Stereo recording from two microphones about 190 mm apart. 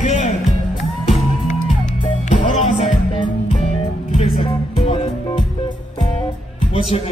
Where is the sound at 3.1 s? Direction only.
25° left (ahead or behind).